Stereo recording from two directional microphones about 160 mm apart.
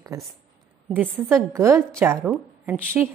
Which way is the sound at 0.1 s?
20° right (ahead or behind).